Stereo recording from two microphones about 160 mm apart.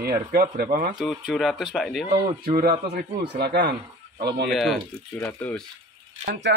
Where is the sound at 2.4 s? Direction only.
90° right.